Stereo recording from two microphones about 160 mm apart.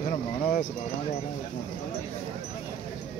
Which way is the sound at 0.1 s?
45° left (ahead or behind).